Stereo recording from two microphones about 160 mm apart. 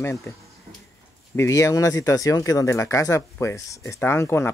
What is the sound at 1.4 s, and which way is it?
Speech, 20° left (ahead or behind).